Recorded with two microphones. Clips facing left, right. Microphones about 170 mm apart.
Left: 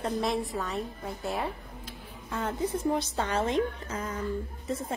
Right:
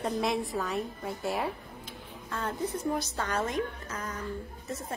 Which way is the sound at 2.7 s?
25° left (ahead or behind).